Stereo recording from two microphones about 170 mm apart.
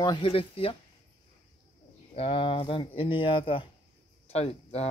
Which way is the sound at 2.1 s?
35° left (ahead or behind).